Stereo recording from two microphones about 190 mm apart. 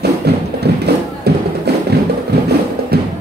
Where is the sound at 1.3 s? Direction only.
60° right (ahead or behind).